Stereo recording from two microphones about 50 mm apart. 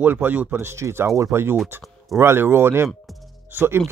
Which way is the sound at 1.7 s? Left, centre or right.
Right.